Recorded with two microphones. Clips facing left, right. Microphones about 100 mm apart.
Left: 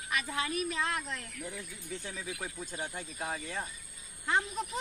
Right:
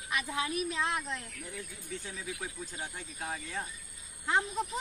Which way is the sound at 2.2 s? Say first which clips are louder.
Even; 10° left (ahead or behind).